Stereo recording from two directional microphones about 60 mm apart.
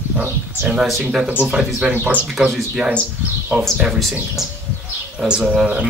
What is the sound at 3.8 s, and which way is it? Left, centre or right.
Speech, centre.